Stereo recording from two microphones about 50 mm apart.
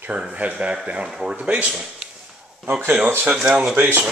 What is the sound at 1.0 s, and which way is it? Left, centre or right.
Speech, centre.